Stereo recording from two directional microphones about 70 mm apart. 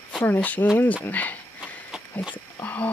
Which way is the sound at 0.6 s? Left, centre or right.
Left.